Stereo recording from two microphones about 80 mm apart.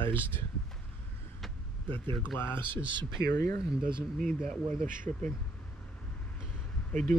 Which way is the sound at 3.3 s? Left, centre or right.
Left.